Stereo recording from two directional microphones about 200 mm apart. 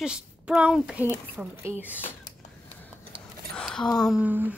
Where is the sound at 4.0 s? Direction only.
5° right (ahead or behind).